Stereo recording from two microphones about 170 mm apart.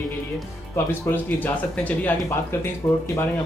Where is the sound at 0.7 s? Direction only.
15° left (ahead or behind).